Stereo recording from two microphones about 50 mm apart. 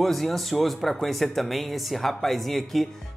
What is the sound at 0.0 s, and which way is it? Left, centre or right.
Speech, centre.